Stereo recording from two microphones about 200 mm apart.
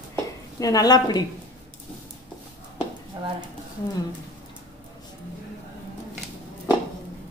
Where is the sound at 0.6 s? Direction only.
20° left (ahead or behind).